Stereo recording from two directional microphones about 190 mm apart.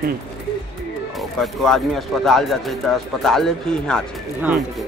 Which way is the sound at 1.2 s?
Centre (ahead or behind).